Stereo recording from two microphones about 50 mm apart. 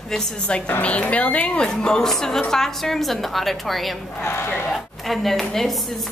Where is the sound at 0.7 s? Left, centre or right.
Left; by 4.0 s centre.